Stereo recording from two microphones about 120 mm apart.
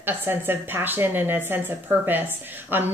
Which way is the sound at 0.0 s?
20° right (ahead or behind).